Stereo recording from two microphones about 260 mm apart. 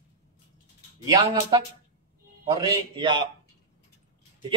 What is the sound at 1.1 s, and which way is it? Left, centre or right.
A man's voice, centre.